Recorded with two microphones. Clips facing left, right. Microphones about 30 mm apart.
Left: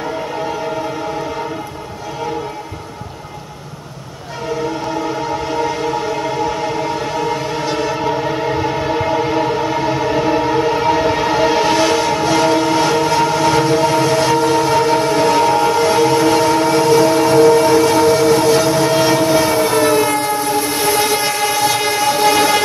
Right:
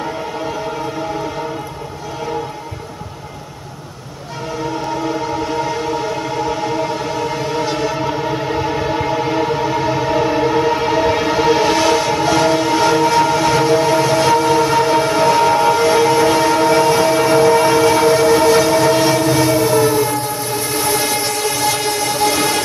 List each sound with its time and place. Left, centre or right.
5.0 s a sound: centre
19.8 s train: left
20.7 s train: left